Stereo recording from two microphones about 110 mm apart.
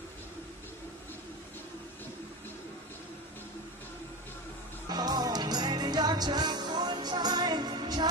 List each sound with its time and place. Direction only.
4.8 s music: 40° right (ahead or behind)